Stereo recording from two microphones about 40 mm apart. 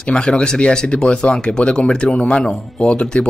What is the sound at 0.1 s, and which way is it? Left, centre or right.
Speech, left.